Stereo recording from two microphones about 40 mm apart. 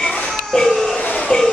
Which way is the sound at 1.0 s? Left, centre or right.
Left.